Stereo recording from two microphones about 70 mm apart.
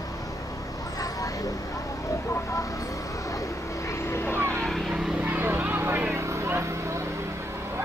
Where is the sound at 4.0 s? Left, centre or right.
Left.